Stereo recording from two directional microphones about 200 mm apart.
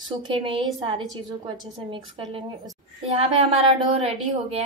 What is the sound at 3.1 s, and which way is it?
A woman's voice, 30° right (ahead or behind).